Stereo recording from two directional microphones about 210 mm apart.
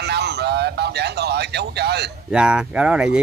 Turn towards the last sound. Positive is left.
turn(degrees=-5)  # may be behind; listen again after turning